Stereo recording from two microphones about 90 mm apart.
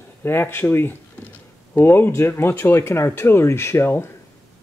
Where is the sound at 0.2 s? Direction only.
25° left (ahead or behind).